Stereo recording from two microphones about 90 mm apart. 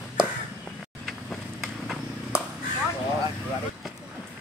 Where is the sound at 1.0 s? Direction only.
Centre (ahead or behind).